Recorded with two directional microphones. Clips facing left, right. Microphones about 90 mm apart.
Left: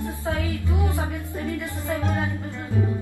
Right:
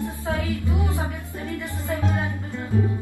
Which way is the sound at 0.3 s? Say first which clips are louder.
Right 1 dB; 20° right (ahead or behind).